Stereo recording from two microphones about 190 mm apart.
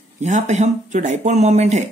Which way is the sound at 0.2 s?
35° right (ahead or behind).